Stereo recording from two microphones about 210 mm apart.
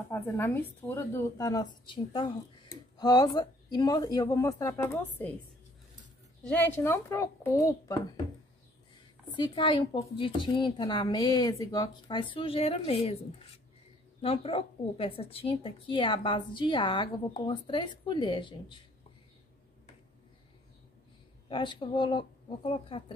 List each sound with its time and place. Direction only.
0.1 s speech: 10° left (ahead or behind)
6.4 s speech: 10° left (ahead or behind)
9.4 s a woman's voice: 20° left (ahead or behind)
14.2 s a woman's voice: 25° left (ahead or behind)
21.5 s a woman's voice: 25° left (ahead or behind)